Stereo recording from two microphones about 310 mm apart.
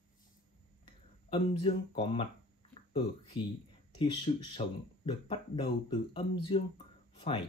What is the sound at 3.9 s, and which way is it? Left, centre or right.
Speech, centre.